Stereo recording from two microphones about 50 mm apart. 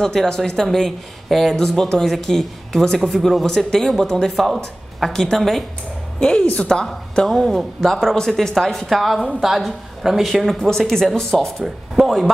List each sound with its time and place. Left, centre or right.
0.0 s speech: centre
6.1 s a woman's voice: centre
6.4 s a woman's voice: left
7.2 s speech: centre
11.6 s speech: centre